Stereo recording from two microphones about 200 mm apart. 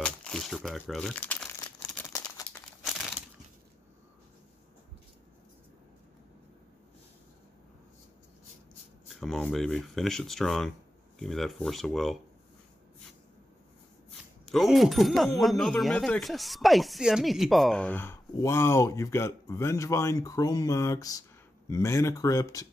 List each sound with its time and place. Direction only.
0.0 s crumpling: 5° left (ahead or behind)
2.8 s crumpling: centre (ahead or behind)
9.1 s speech: centre (ahead or behind)
14.4 s speech: centre (ahead or behind); by 22.7 s 15° left (ahead or behind)